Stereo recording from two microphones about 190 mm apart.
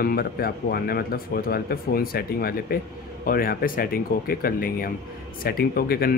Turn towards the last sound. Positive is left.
turn(degrees=50)  # may be behind; listen again after turning